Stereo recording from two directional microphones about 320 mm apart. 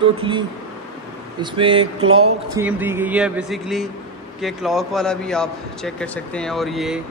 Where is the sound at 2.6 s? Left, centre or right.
Centre.